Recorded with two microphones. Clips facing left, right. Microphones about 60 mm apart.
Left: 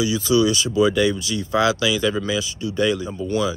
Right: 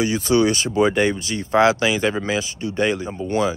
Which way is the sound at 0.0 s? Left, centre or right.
Right.